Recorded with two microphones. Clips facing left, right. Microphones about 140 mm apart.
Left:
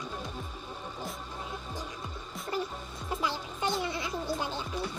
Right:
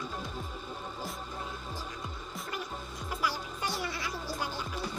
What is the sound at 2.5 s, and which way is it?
Music, 30° left (ahead or behind).